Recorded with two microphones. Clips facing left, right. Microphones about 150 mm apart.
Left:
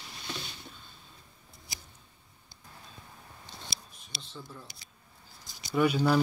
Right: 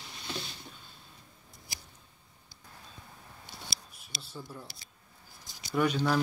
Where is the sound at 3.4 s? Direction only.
10° right (ahead or behind).